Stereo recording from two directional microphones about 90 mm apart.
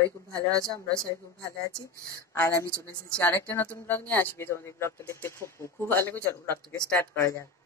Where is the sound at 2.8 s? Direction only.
20° left (ahead or behind).